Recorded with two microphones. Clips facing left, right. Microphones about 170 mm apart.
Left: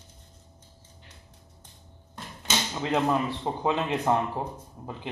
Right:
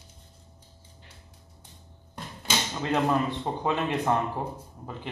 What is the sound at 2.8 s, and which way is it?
Speech, 10° left (ahead or behind).